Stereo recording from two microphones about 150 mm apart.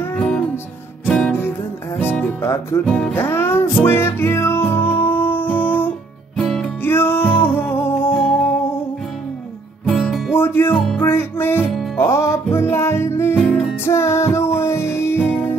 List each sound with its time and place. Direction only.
0.0 s music: 10° left (ahead or behind)
2.0 s music: 15° left (ahead or behind)
9.8 s music: 5° left (ahead or behind)
10.3 s music: 15° left (ahead or behind)